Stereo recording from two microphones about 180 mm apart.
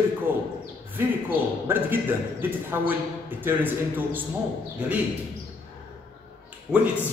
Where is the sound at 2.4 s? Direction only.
10° right (ahead or behind).